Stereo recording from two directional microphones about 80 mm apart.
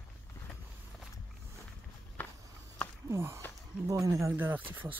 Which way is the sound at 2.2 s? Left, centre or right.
Centre.